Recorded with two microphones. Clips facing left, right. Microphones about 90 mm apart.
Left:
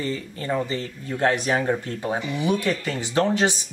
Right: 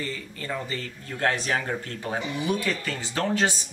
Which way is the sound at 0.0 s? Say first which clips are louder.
Left 5 dB; 25° left (ahead or behind).